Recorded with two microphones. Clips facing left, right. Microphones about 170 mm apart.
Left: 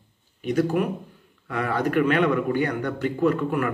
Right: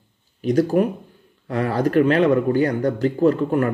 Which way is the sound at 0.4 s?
35° right (ahead or behind).